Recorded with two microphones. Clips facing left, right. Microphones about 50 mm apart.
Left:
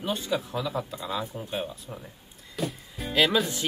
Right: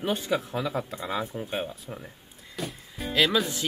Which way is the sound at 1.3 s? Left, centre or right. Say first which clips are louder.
Right 1 dB; centre.